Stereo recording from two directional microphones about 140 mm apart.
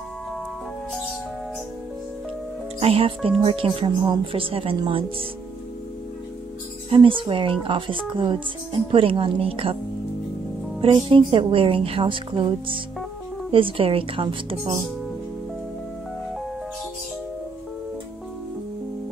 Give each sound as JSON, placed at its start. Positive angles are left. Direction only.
{"t": 2.8, "sound": "speech", "side_deg": -45}
{"t": 6.9, "sound": "speech", "side_deg": -35}
{"t": 10.8, "sound": "speech", "side_deg": -40}